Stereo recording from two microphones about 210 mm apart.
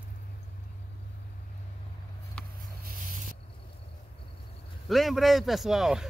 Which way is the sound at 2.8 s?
40° right (ahead or behind).